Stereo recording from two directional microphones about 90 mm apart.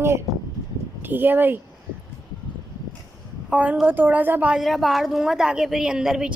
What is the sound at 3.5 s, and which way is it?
A woman's voice, 15° right (ahead or behind).